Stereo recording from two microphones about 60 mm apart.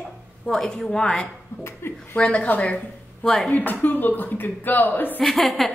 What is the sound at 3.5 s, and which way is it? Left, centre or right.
A man's voice, left.